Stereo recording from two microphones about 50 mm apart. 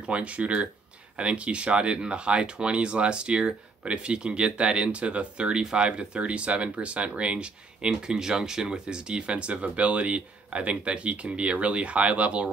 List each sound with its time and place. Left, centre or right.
0.0 s speech: right